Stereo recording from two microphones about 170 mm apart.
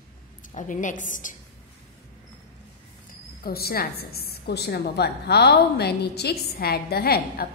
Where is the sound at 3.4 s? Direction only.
65° left (ahead or behind).